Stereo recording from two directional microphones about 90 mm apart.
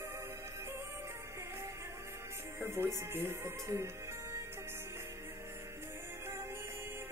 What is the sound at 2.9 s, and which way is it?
Music, 30° right (ahead or behind).